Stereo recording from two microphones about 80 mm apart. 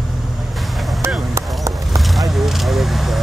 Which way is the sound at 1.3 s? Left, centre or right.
Right.